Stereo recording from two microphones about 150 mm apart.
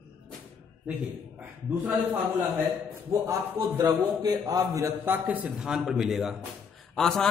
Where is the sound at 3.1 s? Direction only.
20° right (ahead or behind).